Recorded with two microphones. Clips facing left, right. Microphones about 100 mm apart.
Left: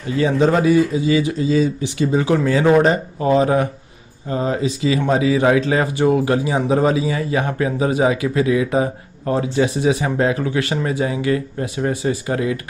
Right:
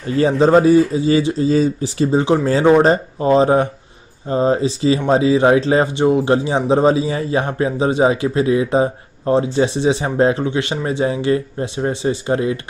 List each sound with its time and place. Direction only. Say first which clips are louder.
0.2 s speech: right 4 dB; 35° right (ahead or behind)